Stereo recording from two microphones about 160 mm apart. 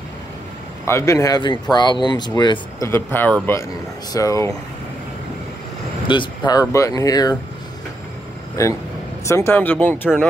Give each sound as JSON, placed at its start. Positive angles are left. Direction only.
{"t": 0.8, "sound": "speech", "side_deg": 15}
{"t": 2.9, "sound": "speech", "side_deg": 15}
{"t": 6.0, "sound": "speech", "side_deg": 30}
{"t": 9.2, "sound": "speech", "side_deg": 15}